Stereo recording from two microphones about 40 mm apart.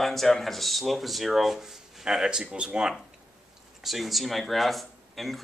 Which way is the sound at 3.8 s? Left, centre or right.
Centre.